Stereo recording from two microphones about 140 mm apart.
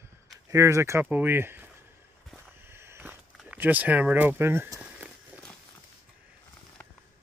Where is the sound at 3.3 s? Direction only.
10° right (ahead or behind).